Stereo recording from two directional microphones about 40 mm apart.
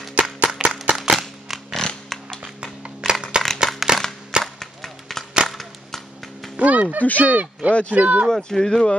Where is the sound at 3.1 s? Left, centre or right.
Right.